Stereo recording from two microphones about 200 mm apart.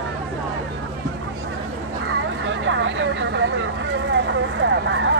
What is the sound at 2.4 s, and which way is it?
Vehicle, 70° right (ahead or behind).